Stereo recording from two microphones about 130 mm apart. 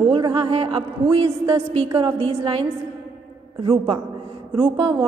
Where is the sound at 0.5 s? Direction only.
45° right (ahead or behind).